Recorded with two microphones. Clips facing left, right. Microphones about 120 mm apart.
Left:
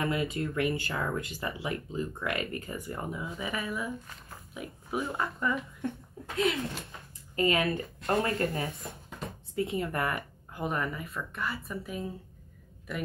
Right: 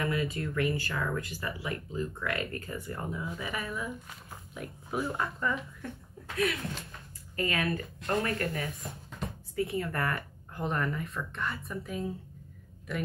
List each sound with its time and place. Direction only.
0.0 s speech: 25° left (ahead or behind)
3.5 s speech: 5° left (ahead or behind)
5.8 s speech: 20° left (ahead or behind); by 12.1 s 5° left (ahead or behind)